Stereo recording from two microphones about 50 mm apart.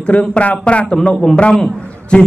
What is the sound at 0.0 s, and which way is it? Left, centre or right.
A man's voice, left.